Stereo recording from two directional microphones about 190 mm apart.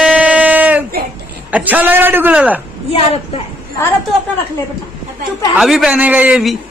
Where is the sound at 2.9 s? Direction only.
30° left (ahead or behind).